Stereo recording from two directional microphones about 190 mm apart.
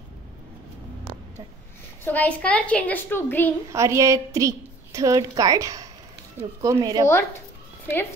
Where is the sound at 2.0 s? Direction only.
10° left (ahead or behind).